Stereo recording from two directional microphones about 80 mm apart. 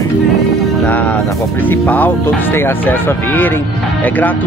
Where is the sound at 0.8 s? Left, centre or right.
Left.